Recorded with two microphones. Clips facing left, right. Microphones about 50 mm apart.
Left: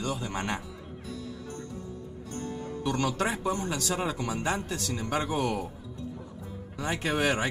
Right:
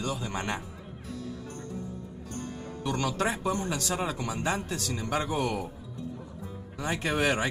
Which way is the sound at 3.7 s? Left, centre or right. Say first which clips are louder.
Even; right.